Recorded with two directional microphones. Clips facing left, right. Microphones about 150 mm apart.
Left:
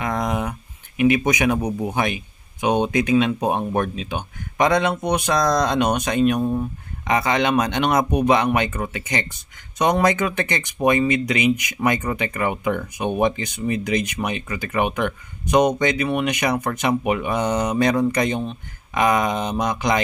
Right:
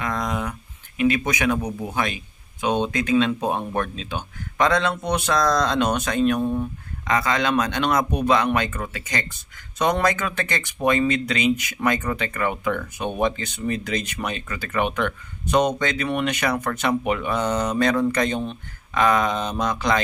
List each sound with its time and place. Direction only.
0.0 s speech: 20° left (ahead or behind)
7.1 s speech: 20° left (ahead or behind)